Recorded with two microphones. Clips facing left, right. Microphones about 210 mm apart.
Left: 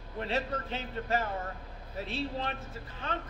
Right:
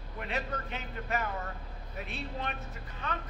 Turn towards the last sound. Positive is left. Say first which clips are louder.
# left 1 dB
turn(degrees=30)  # may be behind; listen again after turning